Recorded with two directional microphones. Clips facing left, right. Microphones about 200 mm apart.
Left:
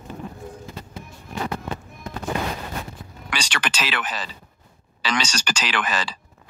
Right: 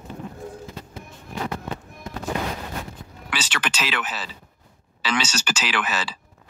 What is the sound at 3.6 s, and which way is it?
Speech, 10° left (ahead or behind).